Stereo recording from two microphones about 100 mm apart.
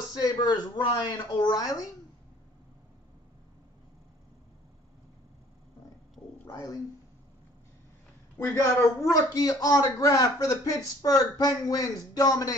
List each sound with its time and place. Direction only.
0.1 s speech: 45° left (ahead or behind)
6.4 s speech: 35° left (ahead or behind)
8.4 s a woman's voice: 25° left (ahead or behind)
9.0 s a man's voice: 35° left (ahead or behind)